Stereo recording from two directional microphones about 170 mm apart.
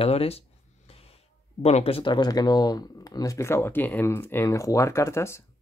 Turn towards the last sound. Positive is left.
turn(degrees=15)  # may be behind; listen again after turning